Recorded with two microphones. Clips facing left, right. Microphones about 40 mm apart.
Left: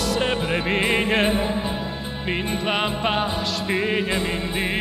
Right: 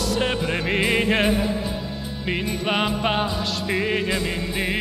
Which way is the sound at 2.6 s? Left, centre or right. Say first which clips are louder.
Right 2 dB; centre.